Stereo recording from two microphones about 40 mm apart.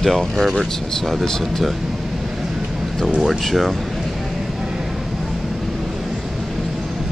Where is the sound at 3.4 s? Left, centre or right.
Centre.